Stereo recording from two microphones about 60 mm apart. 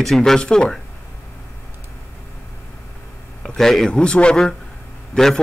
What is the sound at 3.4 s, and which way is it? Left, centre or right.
Speech, centre.